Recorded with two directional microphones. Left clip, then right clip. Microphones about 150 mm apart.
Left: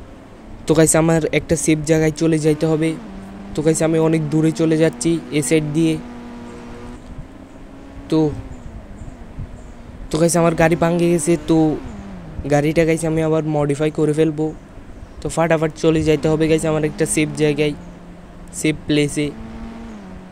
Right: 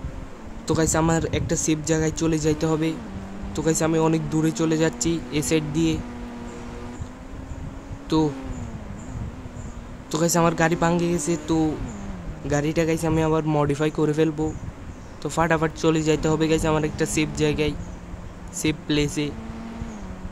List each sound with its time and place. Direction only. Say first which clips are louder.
0.7 s speech: left 7 dB; 35° left (ahead or behind)
6.0 s a sound: left 2 dB; centre (ahead or behind)
8.1 s speech: left 5 dB; 15° left (ahead or behind)
10.1 s speech: left 5 dB; 20° left (ahead or behind)
11.6 s speech: left 7 dB; centre (ahead or behind)
12.4 s speech: left 7 dB; 25° left (ahead or behind)